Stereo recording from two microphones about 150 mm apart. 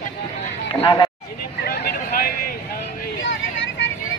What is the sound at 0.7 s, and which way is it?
Speech, 35° left (ahead or behind).